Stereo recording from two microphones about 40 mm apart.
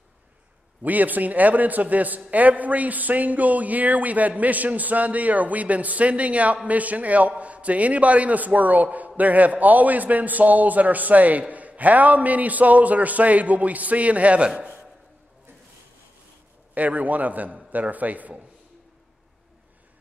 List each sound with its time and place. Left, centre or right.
0.8 s a man's voice: right
16.7 s a man's voice: right